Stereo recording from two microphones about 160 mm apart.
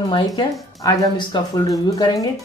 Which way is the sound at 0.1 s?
30° left (ahead or behind).